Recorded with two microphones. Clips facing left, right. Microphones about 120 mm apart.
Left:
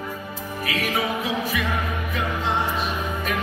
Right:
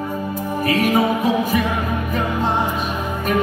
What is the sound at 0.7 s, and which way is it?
Music, 45° right (ahead or behind).